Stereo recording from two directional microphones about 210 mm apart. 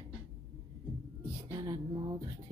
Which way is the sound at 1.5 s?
20° right (ahead or behind).